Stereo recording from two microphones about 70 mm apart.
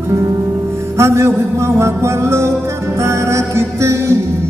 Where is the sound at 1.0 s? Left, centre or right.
Right.